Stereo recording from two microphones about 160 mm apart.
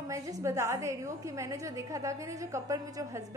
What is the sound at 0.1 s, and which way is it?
A woman's voice, 20° right (ahead or behind).